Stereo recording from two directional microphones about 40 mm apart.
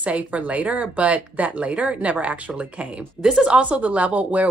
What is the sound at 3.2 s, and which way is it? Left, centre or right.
Speech, right.